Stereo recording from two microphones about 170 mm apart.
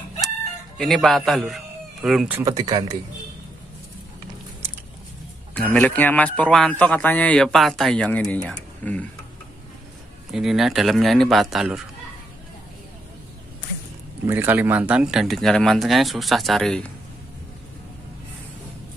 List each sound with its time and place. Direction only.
0.7 s a man's voice: centre (ahead or behind)
2.4 s speech: 25° right (ahead or behind)
5.5 s a man's voice: 5° left (ahead or behind)
10.3 s speech: centre (ahead or behind)
14.2 s speech: 10° right (ahead or behind); by 16.9 s 5° left (ahead or behind)